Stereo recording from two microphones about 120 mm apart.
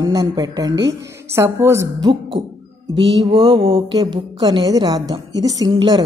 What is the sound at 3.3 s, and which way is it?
Mantra, 50° right (ahead or behind).